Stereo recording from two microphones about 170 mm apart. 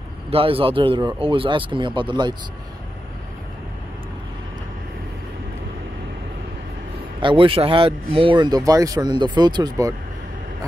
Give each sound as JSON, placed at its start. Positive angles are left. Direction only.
{"t": 0.3, "sound": "speech", "side_deg": -35}
{"t": 7.2, "sound": "speech", "side_deg": -30}